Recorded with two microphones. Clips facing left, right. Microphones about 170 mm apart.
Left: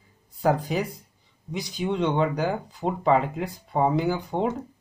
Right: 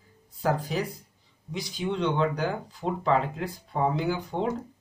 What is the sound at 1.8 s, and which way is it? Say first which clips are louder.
Speech: left 2 dB; 45° left (ahead or behind).